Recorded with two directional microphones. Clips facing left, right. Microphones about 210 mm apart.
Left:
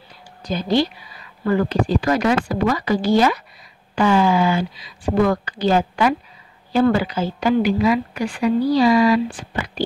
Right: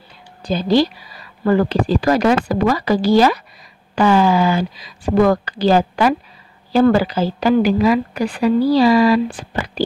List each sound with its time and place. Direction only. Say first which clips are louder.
0.5 s a woman's voice: right 4 dB; 30° right (ahead or behind)